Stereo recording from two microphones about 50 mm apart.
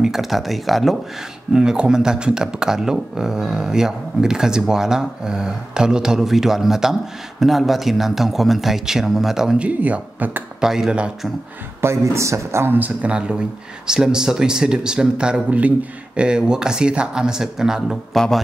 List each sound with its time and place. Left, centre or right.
0.0 s speech: centre
1.5 s speech: centre
9.6 s speech: right
10.6 s speech: centre
11.8 s speech: right
13.0 s speech: right
15.6 s speech: right
16.3 s speech: centre
18.1 s speech: centre